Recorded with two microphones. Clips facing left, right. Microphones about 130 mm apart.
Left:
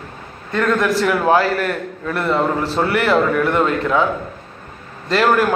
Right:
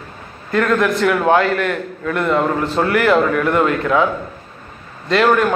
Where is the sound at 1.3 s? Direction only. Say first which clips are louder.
Right 1 dB; 35° left (ahead or behind).